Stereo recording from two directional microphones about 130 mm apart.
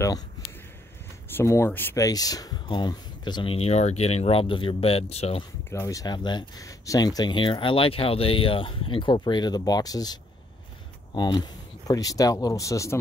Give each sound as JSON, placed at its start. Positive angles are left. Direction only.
{"t": 1.3, "sound": "speech", "side_deg": 20}
{"t": 2.0, "sound": "speech", "side_deg": 25}
{"t": 3.5, "sound": "speech", "side_deg": 55}
{"t": 5.7, "sound": "speech", "side_deg": 20}
{"t": 11.1, "sound": "speech", "side_deg": 35}